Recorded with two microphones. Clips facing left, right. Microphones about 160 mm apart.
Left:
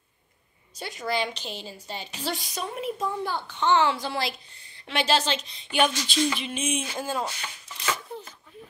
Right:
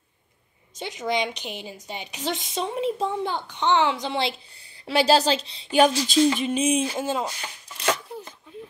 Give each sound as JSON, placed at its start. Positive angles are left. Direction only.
{"t": 0.7, "sound": "a woman's voice", "side_deg": -20}
{"t": 4.8, "sound": "a sound", "side_deg": -35}
{"t": 7.0, "sound": "a woman's voice", "side_deg": -20}